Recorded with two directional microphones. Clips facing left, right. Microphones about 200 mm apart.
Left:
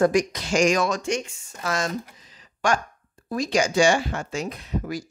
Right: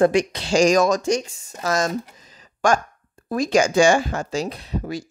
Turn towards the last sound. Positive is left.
turn(degrees=-30)  # may be behind; listen again after turning